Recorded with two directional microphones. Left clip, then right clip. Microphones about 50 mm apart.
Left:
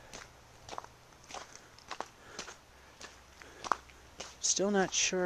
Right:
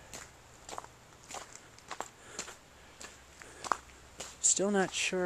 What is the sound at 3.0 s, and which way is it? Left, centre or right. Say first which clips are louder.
Walk: right 1 dB; left.